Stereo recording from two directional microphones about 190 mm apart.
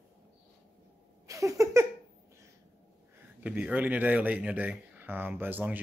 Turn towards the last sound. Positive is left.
turn(degrees=-10)  # may be behind; listen again after turning